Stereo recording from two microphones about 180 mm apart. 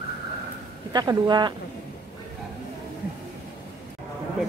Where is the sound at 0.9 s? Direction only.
20° right (ahead or behind).